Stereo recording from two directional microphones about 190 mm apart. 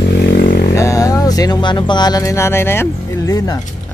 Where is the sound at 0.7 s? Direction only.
15° left (ahead or behind).